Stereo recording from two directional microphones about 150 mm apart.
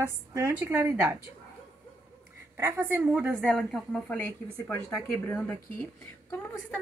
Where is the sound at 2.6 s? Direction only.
15° right (ahead or behind).